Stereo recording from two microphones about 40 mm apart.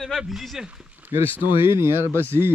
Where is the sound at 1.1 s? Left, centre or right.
Right.